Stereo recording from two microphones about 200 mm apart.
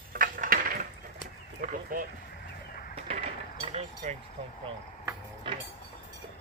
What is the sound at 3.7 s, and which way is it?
Speech, 30° right (ahead or behind).